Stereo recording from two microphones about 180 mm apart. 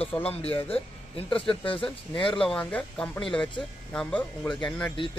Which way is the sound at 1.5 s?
30° left (ahead or behind).